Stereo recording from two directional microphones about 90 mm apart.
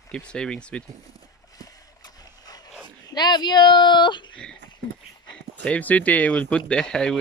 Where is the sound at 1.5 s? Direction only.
45° left (ahead or behind).